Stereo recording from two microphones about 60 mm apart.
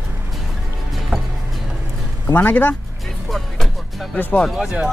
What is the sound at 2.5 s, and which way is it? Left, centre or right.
Speech, left.